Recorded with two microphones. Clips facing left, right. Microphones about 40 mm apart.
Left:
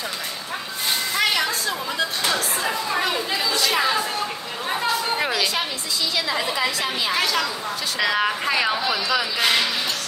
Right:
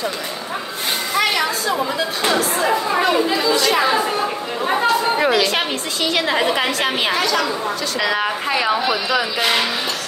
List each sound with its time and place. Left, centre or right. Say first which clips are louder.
1.1 s a sound: right 4 dB; centre
3.0 s a woman's voice: right 6 dB; centre
6.1 s a woman's voice: right 7 dB; right
7.2 s a woman's voice: right 4 dB; centre